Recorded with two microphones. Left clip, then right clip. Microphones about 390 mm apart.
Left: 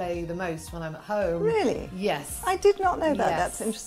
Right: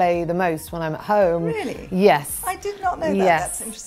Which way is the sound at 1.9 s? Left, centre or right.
Right.